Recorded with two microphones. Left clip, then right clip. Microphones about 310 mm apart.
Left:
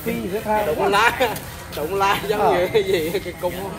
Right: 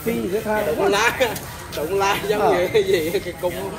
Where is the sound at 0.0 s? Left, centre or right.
Left.